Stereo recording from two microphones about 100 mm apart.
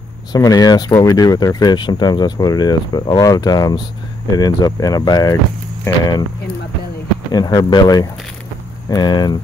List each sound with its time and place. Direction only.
0.3 s speech: 40° left (ahead or behind)
7.3 s speech: 40° left (ahead or behind)